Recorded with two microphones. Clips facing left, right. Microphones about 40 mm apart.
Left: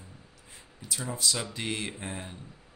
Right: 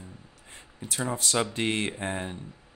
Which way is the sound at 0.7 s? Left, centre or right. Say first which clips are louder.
Right 5 dB; right.